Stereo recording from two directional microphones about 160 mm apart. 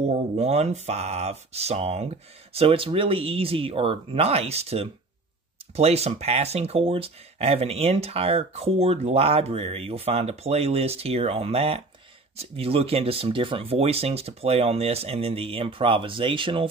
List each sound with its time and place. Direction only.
0.1 s speech: 40° right (ahead or behind)